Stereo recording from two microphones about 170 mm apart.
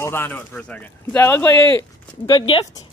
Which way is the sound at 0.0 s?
15° left (ahead or behind).